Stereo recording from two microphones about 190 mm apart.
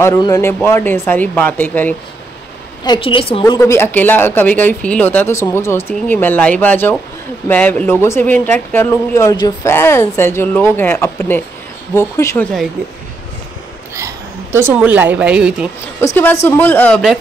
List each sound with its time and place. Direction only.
0.0 s speech: 15° left (ahead or behind)
2.8 s a woman's voice: 25° left (ahead or behind)
3.5 s speech: 15° left (ahead or behind)
13.9 s a woman's voice: 15° right (ahead or behind)
16.4 s speech: 10° left (ahead or behind)